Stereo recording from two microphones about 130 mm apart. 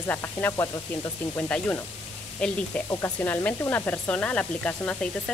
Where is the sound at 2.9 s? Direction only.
20° left (ahead or behind).